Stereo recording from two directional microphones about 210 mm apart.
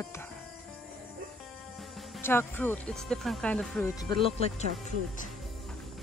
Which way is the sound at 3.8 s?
20° left (ahead or behind).